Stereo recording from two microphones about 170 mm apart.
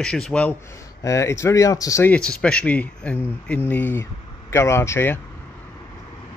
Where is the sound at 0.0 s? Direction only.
5° left (ahead or behind).